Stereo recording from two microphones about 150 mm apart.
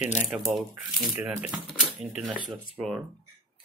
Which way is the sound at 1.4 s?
5° right (ahead or behind).